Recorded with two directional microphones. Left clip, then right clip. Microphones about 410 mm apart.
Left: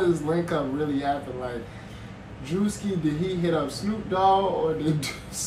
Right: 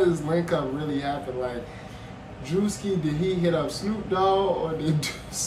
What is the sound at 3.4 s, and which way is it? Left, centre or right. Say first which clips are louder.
A man's voice: right 1 dB; centre.